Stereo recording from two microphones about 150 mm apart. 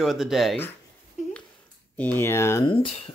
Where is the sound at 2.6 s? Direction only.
35° left (ahead or behind).